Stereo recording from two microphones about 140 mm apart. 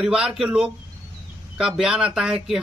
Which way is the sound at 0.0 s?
5° right (ahead or behind).